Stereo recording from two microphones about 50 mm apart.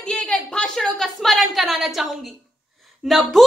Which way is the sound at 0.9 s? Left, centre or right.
Centre.